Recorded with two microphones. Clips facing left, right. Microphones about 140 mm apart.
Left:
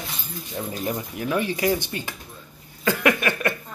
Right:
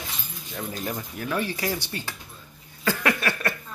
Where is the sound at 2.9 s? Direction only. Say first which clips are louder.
Left 4 dB; 15° left (ahead or behind).